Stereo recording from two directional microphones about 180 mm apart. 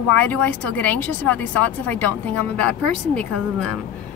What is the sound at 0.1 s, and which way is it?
Speech, 10° left (ahead or behind).